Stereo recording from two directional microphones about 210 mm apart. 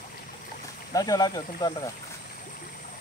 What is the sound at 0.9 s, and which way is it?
Speech, 20° left (ahead or behind).